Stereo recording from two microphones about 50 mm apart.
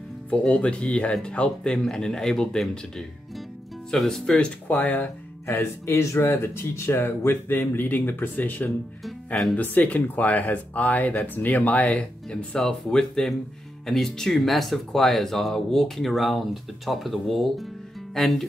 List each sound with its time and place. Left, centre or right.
0.4 s speech: left; by 4.4 s centre
4.4 s speech: left
5.5 s speech: left
6.2 s speech: left
12.5 s speech: centre